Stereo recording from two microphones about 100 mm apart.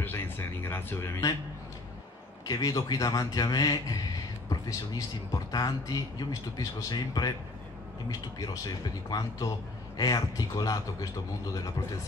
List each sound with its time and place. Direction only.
0.0 s speech: 20° left (ahead or behind)
2.4 s speech: 40° left (ahead or behind)